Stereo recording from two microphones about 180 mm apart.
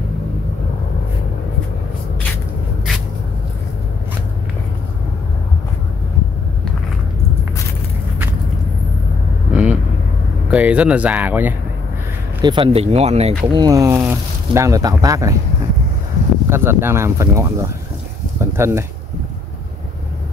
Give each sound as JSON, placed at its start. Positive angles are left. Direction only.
{"t": 9.5, "sound": "vehicle", "side_deg": -5}
{"t": 10.5, "sound": "speech", "side_deg": -5}
{"t": 12.4, "sound": "speech", "side_deg": -25}
{"t": 13.5, "sound": "speech", "side_deg": -20}
{"t": 16.4, "sound": "speech", "side_deg": -15}
{"t": 18.4, "sound": "a sound", "side_deg": -15}